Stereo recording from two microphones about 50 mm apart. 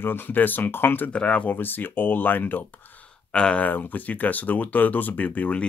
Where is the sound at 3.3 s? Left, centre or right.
Centre.